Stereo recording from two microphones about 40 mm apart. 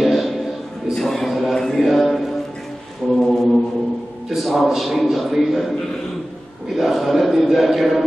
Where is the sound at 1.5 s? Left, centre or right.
Centre.